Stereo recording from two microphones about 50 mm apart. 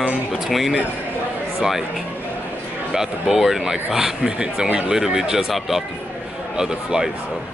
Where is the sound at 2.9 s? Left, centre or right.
Centre.